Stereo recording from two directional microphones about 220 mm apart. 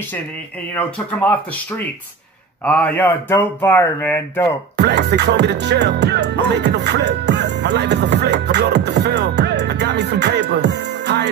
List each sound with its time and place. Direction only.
0.7 s speech: 5° left (ahead or behind)
2.6 s speech: 5° left (ahead or behind)
4.7 s music: 50° right (ahead or behind)